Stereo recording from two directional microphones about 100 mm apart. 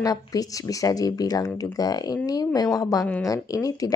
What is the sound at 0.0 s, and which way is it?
Speech, 35° left (ahead or behind).